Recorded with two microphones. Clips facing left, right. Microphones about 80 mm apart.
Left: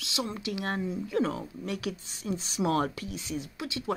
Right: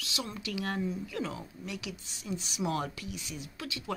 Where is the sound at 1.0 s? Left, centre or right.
Left.